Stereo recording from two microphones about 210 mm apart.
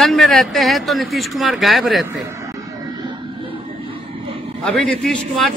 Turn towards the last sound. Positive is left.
turn(degrees=0)  # may be behind; listen again after turning